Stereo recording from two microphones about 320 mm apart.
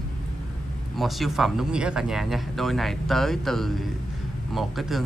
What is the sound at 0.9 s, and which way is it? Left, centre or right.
Speech, centre.